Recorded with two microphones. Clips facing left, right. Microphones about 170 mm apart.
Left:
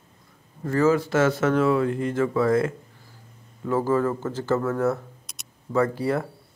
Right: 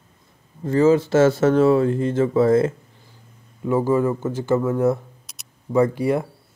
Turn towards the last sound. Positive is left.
turn(degrees=-15)  # may be behind; listen again after turning